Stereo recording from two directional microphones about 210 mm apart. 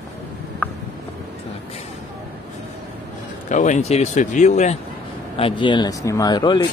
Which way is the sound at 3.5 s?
35° left (ahead or behind).